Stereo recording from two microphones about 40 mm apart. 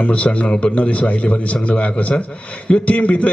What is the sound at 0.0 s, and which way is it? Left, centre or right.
A man's voice, left.